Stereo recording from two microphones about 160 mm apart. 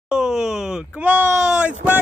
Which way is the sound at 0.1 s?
5° right (ahead or behind).